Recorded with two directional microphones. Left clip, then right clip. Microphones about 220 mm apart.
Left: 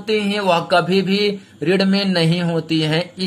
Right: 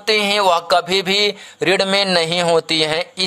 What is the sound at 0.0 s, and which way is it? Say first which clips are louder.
Speech: right 4 dB; 45° right (ahead or behind).